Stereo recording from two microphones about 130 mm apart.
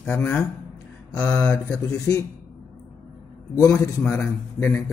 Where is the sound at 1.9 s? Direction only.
25° left (ahead or behind).